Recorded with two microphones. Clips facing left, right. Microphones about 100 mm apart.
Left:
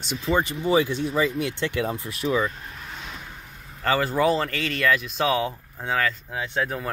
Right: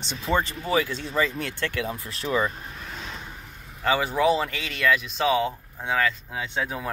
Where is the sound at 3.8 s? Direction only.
5° right (ahead or behind).